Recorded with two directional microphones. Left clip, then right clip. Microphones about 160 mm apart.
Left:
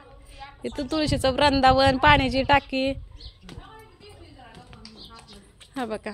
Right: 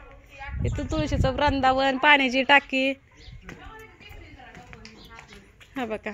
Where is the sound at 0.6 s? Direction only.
20° left (ahead or behind).